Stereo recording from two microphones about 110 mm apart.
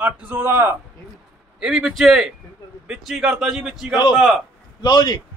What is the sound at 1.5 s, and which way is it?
A man's voice, 5° right (ahead or behind).